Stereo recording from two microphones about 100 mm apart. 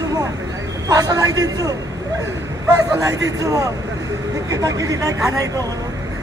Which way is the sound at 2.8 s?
35° right (ahead or behind).